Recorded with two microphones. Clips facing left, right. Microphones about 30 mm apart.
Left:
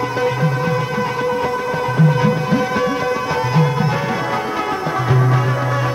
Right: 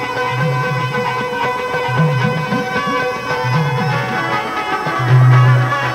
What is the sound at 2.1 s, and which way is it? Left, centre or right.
Music, centre.